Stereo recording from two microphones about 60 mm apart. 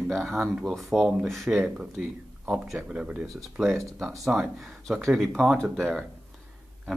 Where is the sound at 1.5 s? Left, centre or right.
Centre.